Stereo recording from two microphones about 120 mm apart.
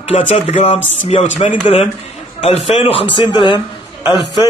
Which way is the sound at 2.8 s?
50° left (ahead or behind).